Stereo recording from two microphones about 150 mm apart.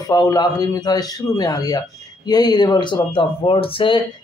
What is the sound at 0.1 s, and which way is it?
A man's voice, 25° left (ahead or behind).